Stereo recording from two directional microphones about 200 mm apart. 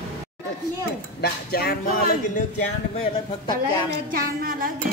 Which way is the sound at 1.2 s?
50° left (ahead or behind).